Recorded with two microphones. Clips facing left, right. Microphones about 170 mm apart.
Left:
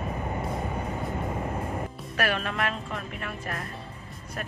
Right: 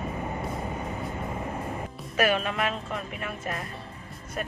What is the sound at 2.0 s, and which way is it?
Speech, centre (ahead or behind).